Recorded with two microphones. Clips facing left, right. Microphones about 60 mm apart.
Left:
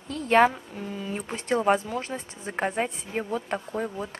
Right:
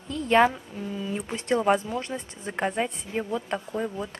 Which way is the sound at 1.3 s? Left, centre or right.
Centre.